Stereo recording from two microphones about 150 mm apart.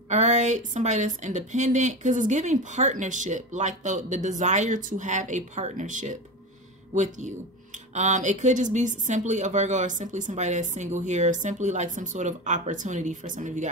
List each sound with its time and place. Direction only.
0.1 s a woman's voice: 50° right (ahead or behind)